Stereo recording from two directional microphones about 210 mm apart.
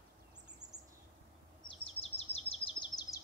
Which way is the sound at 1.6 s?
25° left (ahead or behind).